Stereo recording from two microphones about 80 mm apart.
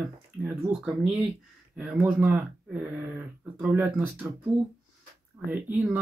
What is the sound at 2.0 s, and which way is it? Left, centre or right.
Speech, right.